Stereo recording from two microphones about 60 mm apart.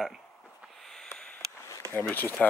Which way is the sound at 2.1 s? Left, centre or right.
Left.